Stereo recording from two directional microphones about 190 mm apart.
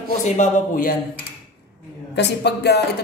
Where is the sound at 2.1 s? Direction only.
60° left (ahead or behind).